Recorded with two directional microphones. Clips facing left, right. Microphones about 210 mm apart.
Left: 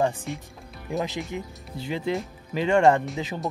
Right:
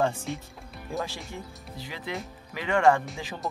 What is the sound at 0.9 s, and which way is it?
Speech, 20° left (ahead or behind).